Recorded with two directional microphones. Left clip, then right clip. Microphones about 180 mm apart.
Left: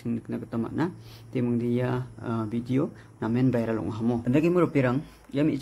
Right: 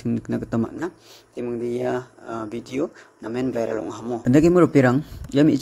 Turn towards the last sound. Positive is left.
turn(degrees=-35)  # may be behind; listen again after turning